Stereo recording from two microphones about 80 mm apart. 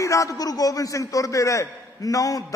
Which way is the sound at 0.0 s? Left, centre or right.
Left.